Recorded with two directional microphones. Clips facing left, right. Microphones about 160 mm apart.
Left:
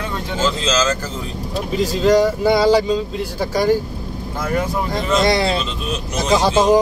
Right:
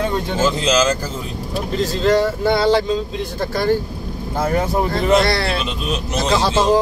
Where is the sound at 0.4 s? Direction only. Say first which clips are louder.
Right 2 dB; 20° right (ahead or behind).